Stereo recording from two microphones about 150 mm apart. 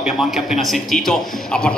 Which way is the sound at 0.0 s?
5° right (ahead or behind).